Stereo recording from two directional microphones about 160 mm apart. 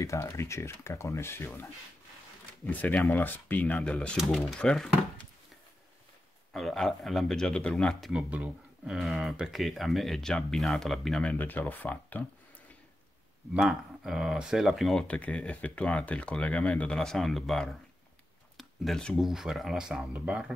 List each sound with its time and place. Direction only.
0.0 s speech: 20° left (ahead or behind)
6.5 s speech: centre (ahead or behind)
13.6 s speech: 5° right (ahead or behind)